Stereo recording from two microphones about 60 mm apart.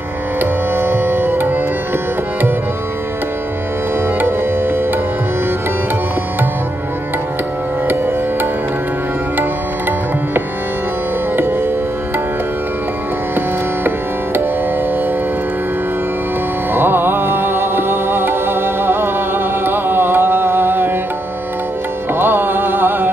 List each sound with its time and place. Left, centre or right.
0.4 s music: right
4.2 s music: right
9.4 s music: right
16.7 s music: right
22.2 s music: right